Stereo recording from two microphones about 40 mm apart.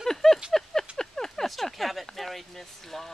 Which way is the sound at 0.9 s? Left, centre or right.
Centre.